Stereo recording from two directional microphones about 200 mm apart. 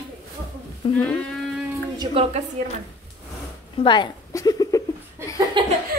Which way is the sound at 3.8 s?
20° left (ahead or behind).